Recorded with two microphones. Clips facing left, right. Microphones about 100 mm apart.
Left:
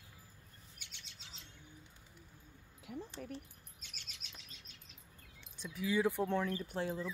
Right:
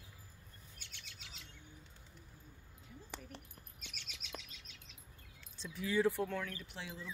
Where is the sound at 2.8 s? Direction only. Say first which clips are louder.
Left 12 dB; 80° left.